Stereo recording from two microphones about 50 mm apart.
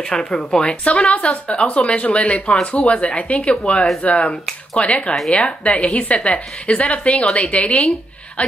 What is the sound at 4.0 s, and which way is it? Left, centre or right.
Speech, left.